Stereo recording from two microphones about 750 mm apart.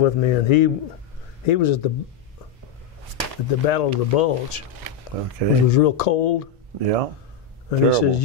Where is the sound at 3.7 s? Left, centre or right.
Left.